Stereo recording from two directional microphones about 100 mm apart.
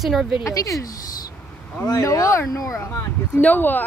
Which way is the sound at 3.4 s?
20° left (ahead or behind).